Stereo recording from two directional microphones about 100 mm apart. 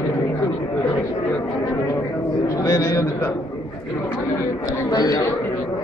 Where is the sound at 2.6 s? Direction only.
30° left (ahead or behind).